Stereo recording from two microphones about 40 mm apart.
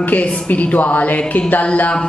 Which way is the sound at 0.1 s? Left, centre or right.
Left.